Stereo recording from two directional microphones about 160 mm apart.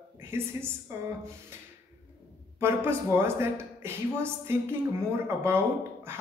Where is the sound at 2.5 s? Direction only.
15° right (ahead or behind).